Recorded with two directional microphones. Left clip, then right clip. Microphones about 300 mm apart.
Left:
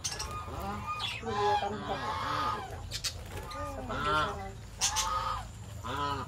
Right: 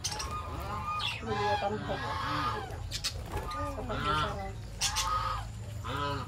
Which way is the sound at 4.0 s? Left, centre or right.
Left.